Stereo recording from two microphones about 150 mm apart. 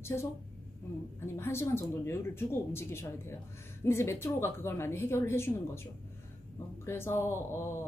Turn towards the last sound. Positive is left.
turn(degrees=15)  # may be behind; listen again after turning